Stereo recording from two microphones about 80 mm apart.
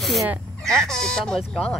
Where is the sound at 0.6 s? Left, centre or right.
Centre.